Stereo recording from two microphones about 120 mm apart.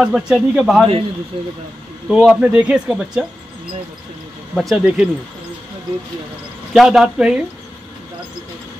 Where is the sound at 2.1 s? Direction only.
5° right (ahead or behind).